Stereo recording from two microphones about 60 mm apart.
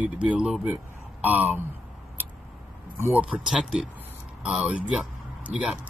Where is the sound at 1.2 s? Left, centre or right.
Right.